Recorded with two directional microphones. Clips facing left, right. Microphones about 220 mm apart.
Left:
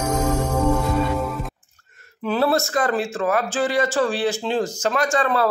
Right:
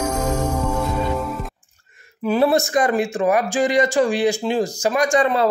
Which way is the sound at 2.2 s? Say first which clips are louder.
Right 3 dB; 15° right (ahead or behind).